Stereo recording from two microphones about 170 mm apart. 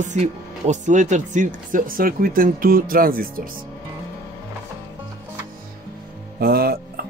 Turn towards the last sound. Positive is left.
turn(degrees=-65)  # may be behind; listen again after turning